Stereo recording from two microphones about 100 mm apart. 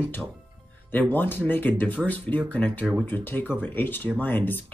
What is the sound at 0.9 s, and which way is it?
Speech, 15° left (ahead or behind).